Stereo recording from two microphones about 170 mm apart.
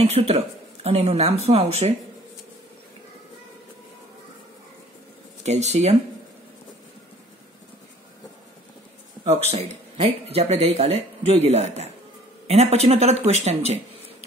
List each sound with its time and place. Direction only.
0.0 s speech: 35° right (ahead or behind)
5.4 s speech: 40° right (ahead or behind)
9.5 s speech: 40° right (ahead or behind)